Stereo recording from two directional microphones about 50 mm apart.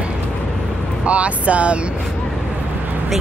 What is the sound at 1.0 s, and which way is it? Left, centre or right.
Speech, right.